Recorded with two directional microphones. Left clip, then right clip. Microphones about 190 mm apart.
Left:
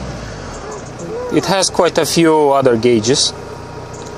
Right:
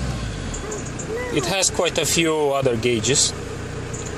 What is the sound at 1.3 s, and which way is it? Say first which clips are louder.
Speech: left 8 dB; 30° left (ahead or behind).